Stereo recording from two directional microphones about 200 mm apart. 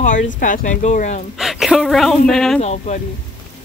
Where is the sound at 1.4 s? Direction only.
Centre (ahead or behind).